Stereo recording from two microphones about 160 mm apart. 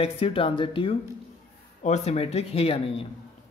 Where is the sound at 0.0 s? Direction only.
35° left (ahead or behind).